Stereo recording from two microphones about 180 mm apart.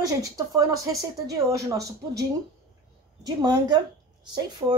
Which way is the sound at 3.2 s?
20° right (ahead or behind).